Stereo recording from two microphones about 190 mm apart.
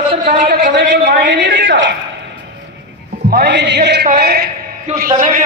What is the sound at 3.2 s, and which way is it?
A man's voice, 60° right (ahead or behind).